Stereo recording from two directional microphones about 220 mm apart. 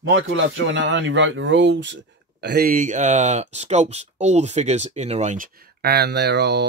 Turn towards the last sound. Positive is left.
turn(degrees=-50)  # may be behind; listen again after turning